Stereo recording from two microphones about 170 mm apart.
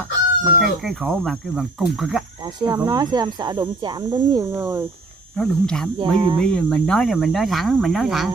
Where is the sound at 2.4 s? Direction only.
20° right (ahead or behind).